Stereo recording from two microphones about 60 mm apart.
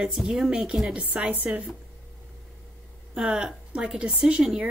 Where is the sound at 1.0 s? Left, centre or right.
Right.